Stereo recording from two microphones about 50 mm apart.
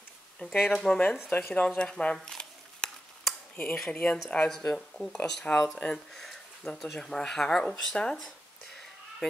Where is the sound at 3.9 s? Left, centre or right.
Left.